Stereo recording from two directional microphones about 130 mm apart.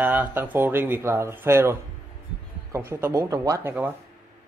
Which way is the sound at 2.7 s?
20° right (ahead or behind).